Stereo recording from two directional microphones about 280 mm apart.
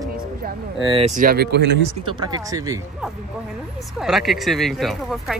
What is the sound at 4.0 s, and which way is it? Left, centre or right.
Speech, centre.